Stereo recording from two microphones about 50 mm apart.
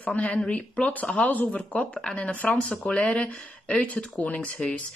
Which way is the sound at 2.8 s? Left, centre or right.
Centre.